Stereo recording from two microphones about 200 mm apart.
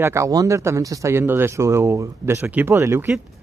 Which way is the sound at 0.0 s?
15° right (ahead or behind).